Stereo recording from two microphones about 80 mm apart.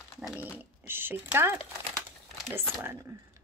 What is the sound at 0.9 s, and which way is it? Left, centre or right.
Speech, right.